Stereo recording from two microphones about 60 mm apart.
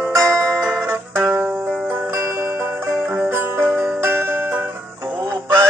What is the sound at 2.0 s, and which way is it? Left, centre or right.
Music, right.